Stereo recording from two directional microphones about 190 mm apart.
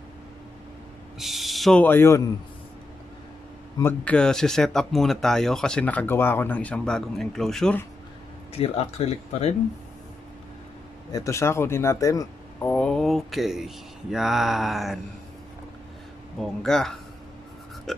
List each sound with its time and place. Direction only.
1.2 s speech: centre (ahead or behind)
3.7 s speech: 10° left (ahead or behind)
8.5 s speech: 35° left (ahead or behind)
11.1 s speech: 15° left (ahead or behind); by 15.0 s centre (ahead or behind)
16.3 s speech: centre (ahead or behind)
17.9 s a sound: centre (ahead or behind)